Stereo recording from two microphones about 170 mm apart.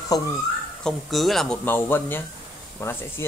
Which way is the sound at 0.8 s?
Centre (ahead or behind).